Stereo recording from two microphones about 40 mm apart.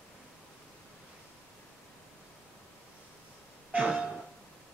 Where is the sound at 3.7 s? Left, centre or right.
Right.